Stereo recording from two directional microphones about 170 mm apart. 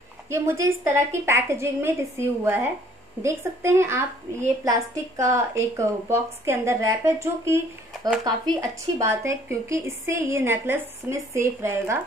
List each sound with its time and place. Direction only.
0.3 s a woman's voice: 15° right (ahead or behind)